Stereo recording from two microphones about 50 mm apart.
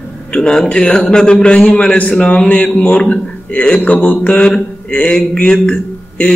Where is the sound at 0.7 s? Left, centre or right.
Centre.